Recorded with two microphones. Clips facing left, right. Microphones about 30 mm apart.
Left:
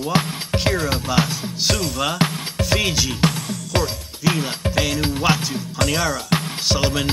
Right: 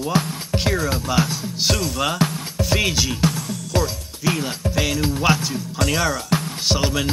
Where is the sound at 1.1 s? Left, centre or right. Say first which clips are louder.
Left 1 dB; centre.